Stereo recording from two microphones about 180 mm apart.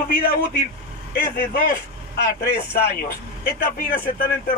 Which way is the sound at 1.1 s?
55° left (ahead or behind).